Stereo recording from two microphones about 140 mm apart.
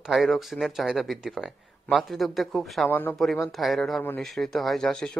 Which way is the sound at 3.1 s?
Centre (ahead or behind).